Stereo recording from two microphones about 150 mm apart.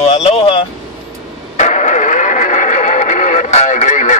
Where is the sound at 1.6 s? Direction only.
55° left (ahead or behind).